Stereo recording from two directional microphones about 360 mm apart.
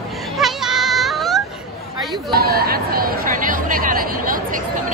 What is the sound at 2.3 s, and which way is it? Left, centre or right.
Chatter, right.